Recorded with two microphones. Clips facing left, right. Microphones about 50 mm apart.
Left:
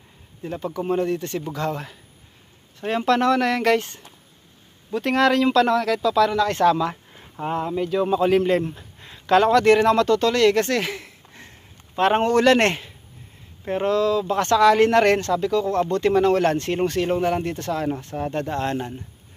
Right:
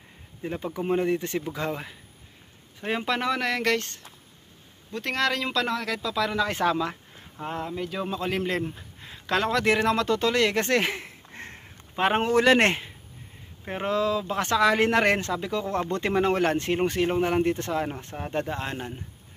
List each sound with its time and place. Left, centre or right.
0.4 s a man's voice: centre
7.4 s a man's voice: centre; by 11.4 s right
11.9 s speech: centre